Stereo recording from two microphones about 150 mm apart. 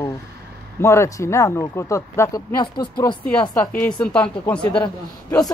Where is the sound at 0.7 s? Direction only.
20° left (ahead or behind).